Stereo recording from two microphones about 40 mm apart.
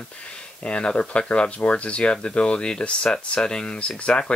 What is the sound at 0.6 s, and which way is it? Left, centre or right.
Speech, left.